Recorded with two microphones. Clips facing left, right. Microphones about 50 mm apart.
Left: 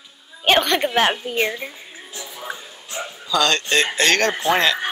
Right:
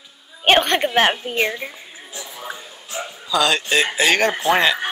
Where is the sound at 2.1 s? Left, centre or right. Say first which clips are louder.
Even; centre.